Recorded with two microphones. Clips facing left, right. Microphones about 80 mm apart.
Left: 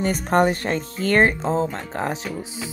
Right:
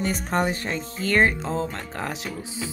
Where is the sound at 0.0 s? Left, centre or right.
Left.